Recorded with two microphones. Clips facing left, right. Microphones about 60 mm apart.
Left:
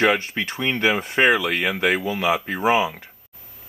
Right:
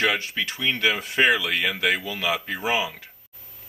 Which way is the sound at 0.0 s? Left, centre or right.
Left.